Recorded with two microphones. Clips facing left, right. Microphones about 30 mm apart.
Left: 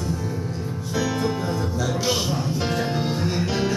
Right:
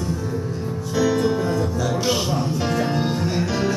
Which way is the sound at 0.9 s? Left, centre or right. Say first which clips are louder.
Right 5 dB; centre.